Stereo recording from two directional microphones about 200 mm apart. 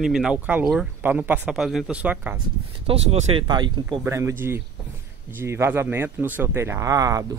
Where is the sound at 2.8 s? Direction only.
30° right (ahead or behind).